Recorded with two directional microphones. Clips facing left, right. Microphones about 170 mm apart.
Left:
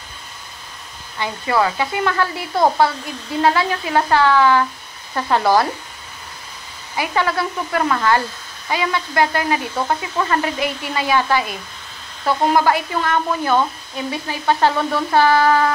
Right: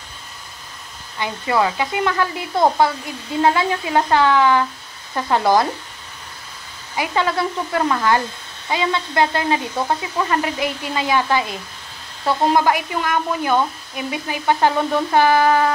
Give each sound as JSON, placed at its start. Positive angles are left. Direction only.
{"t": 1.2, "sound": "speech", "side_deg": -20}
{"t": 7.0, "sound": "speech", "side_deg": -20}